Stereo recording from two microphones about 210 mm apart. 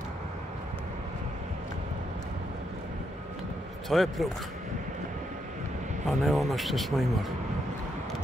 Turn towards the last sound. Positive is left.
turn(degrees=0)  # may be behind; listen again after turning